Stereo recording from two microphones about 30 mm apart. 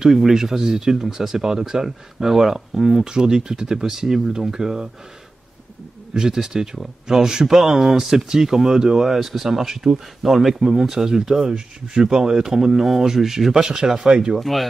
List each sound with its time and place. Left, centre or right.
0.3 s speech: centre
3.1 s speech: right
3.8 s speech: centre
6.1 s speech: centre
13.6 s speech: right
14.4 s speech: centre